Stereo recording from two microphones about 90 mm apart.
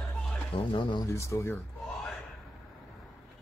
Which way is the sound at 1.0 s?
30° left (ahead or behind).